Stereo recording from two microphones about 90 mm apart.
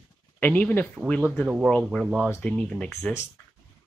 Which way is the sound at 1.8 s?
5° left (ahead or behind).